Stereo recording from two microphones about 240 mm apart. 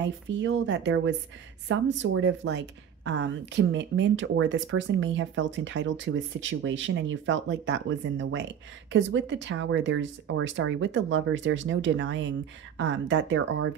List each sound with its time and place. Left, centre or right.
0.3 s speech: right